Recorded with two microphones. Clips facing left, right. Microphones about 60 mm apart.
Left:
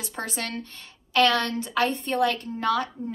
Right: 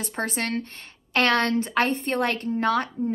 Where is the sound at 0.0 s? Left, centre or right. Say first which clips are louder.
Right 4 dB; right.